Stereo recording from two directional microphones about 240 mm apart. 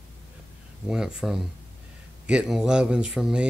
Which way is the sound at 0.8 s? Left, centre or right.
Centre.